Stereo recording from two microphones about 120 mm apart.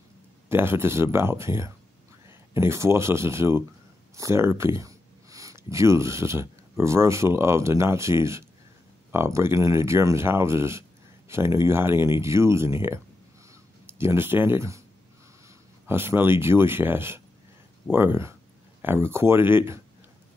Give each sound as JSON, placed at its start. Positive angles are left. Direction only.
{"t": 0.5, "sound": "speech", "side_deg": -20}